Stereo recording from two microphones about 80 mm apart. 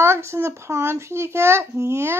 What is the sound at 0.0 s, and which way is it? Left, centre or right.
A child's voice, right.